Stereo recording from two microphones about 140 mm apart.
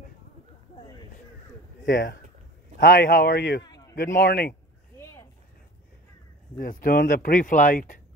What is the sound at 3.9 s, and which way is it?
Speech, 80° left.